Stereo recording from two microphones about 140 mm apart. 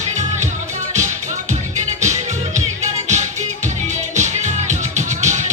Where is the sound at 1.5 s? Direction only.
55° right (ahead or behind).